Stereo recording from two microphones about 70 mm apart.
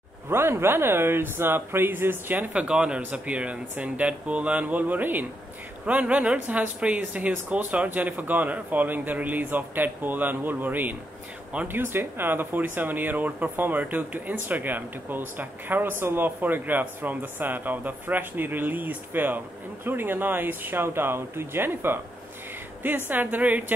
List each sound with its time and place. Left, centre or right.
0.3 s speech: right
2.5 s speech: centre